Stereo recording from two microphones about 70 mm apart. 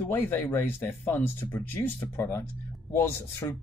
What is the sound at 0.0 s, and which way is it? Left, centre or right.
Speech, left.